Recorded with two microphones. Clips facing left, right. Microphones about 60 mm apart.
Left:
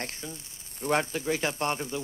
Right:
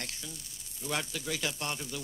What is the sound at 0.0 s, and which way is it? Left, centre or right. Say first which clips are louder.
Speech: left 5 dB; left.